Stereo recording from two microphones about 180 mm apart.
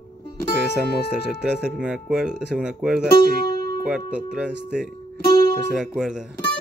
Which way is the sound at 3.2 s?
60° left (ahead or behind).